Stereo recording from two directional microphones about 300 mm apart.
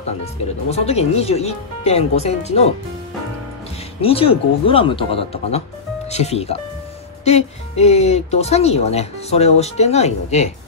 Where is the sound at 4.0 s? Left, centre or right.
Centre.